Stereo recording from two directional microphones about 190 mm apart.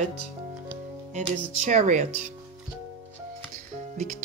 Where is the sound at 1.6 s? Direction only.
40° right (ahead or behind).